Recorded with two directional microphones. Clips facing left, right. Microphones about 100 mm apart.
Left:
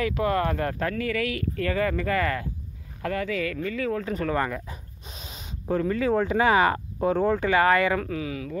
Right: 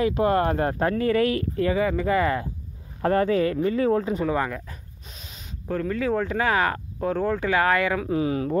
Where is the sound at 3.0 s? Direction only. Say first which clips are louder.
Right 7 dB; 35° right (ahead or behind).